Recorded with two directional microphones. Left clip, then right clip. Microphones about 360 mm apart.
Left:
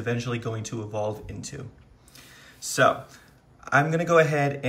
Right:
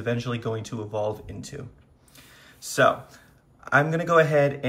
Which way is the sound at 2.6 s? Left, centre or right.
Centre.